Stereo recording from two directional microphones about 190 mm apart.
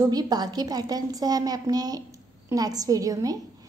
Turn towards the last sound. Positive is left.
turn(degrees=-20)  # may be behind; listen again after turning